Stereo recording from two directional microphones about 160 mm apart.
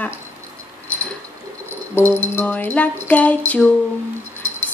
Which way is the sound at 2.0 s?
15° left (ahead or behind).